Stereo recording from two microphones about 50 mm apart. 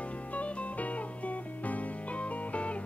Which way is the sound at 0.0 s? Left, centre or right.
Left.